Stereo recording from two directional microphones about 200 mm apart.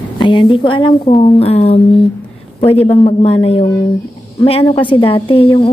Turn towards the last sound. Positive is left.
turn(degrees=25)  # may be behind; listen again after turning